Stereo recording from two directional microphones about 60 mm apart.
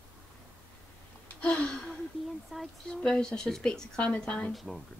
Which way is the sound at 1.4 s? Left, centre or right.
Centre.